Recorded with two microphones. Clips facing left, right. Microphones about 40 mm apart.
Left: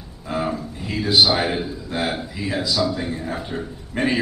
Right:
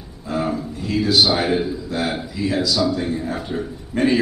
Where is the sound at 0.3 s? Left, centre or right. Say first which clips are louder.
Right 2 dB; centre.